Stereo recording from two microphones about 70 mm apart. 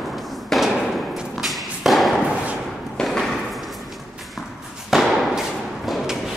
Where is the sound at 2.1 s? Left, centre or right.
Centre.